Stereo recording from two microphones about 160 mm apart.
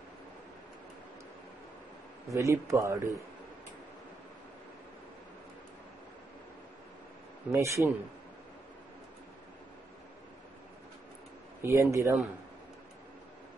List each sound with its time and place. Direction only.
2.2 s a man's voice: 20° right (ahead or behind)
7.5 s a man's voice: 20° right (ahead or behind)
11.6 s speech: 20° right (ahead or behind)